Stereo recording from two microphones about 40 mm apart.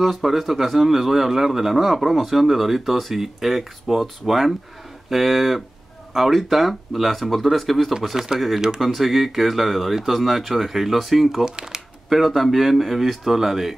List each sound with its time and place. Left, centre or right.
0.0 s a man's voice: centre
7.9 s speech: centre
8.8 s a man's voice: centre
11.4 s speech: centre
12.1 s a man's voice: centre